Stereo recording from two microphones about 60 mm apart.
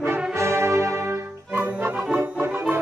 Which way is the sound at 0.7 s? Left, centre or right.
Right.